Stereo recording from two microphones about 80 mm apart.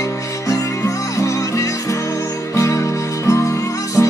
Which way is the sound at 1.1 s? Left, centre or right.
Left.